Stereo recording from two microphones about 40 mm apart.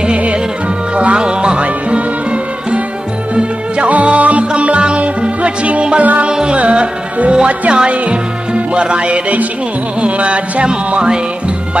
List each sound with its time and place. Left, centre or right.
0.0 s music: right